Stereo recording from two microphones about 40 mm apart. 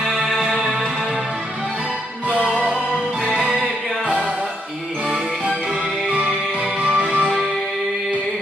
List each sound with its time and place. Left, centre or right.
0.6 s music: centre
3.4 s music: centre
6.8 s music: right